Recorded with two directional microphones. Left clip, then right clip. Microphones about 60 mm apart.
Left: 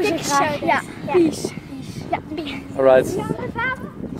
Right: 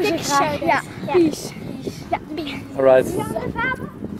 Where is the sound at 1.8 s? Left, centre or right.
Centre.